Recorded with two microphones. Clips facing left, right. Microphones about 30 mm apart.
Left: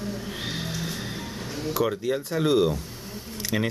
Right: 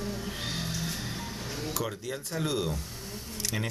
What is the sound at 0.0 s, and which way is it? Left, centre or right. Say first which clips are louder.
Music: left 3 dB; centre.